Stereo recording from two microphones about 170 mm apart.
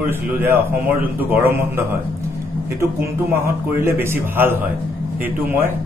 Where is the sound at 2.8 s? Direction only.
15° right (ahead or behind).